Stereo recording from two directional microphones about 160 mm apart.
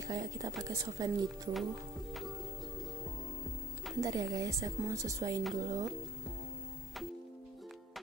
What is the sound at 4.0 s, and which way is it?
A woman's voice, 20° right (ahead or behind).